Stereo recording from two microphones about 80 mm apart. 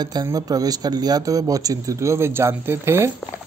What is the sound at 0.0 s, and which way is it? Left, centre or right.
Speech, right.